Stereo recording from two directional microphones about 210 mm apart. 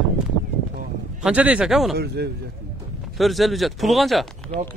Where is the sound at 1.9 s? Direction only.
50° right (ahead or behind).